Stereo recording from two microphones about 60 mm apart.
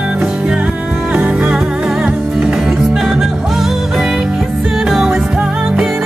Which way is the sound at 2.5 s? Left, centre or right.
Centre.